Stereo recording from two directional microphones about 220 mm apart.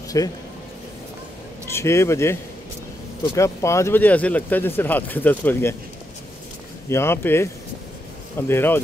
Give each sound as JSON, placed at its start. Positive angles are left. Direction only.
{"t": 0.1, "sound": "speech", "side_deg": 15}
{"t": 1.7, "sound": "speech", "side_deg": 10}
{"t": 3.3, "sound": "speech", "side_deg": 15}
{"t": 6.9, "sound": "speech", "side_deg": 10}